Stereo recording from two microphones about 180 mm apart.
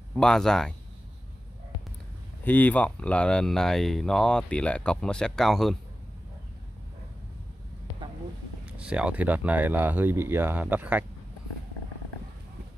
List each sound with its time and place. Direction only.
0.1 s speech: 5° left (ahead or behind)
2.4 s speech: 10° left (ahead or behind)
8.6 s speech: 5° right (ahead or behind)